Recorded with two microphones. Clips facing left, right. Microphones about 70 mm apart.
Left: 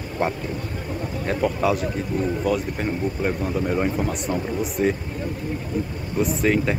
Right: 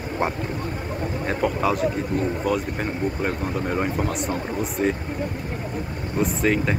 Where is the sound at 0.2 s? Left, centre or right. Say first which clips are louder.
Left 1 dB; centre.